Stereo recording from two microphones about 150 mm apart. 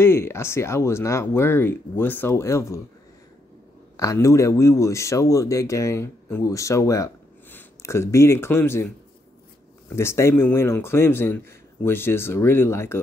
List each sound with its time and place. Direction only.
0.0 s speech: 15° left (ahead or behind)
3.9 s speech: 20° left (ahead or behind)
9.8 s speech: 20° left (ahead or behind)